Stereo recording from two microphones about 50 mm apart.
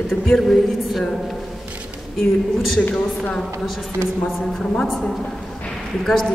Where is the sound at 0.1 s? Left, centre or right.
Centre.